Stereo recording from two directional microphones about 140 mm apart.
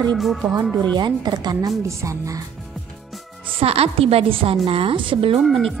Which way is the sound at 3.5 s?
45° right (ahead or behind).